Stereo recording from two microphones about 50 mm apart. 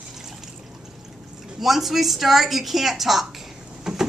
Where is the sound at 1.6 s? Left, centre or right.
Centre.